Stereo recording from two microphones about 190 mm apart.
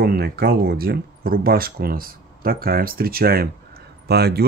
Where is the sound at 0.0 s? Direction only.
55° right (ahead or behind).